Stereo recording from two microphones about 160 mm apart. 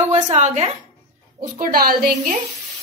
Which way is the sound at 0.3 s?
40° right (ahead or behind).